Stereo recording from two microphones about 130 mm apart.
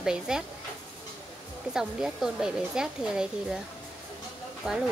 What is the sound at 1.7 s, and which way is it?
Speech, 5° right (ahead or behind).